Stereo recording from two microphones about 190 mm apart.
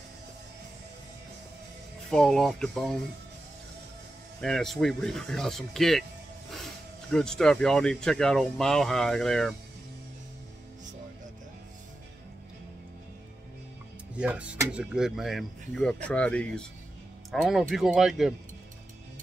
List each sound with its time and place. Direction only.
2.0 s speech: 5° left (ahead or behind)
4.4 s speech: centre (ahead or behind)
14.1 s speech: 5° right (ahead or behind)